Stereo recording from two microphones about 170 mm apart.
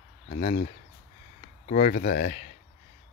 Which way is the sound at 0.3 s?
50° left (ahead or behind).